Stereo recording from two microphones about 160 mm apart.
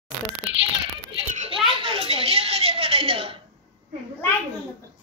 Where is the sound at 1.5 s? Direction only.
35° right (ahead or behind).